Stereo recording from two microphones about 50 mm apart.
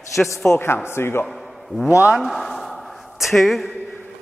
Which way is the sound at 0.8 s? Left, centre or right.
Left.